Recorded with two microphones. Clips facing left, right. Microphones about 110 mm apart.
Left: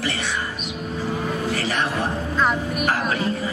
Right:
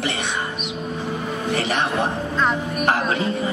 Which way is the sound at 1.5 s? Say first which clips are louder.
Right 2 dB; 20° right (ahead or behind).